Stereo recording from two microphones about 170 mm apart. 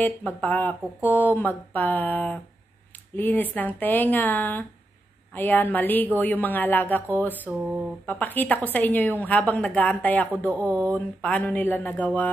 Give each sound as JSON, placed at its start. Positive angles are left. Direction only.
{"t": 0.0, "sound": "speech", "side_deg": 10}